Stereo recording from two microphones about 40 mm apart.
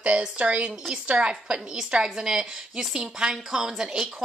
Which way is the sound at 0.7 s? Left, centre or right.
Centre.